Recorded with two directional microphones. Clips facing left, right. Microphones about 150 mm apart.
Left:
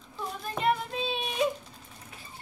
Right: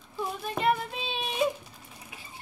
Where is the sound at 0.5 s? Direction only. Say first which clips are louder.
Even; centre (ahead or behind).